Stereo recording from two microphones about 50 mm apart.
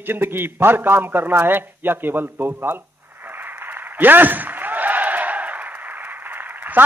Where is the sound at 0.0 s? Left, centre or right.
Right.